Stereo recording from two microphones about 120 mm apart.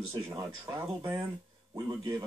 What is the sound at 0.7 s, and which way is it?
Speech, 20° right (ahead or behind).